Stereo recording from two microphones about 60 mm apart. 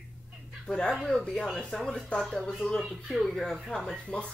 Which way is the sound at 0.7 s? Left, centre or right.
Centre.